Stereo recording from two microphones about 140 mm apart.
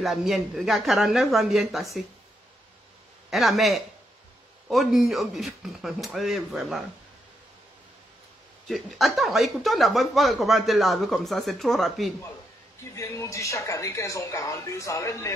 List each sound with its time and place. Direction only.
0.0 s speech: centre (ahead or behind)
3.3 s speech: centre (ahead or behind)
8.6 s speech: centre (ahead or behind)
12.9 s speech: 20° left (ahead or behind)